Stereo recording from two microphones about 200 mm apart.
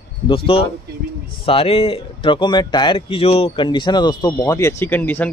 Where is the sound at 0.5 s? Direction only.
30° left (ahead or behind).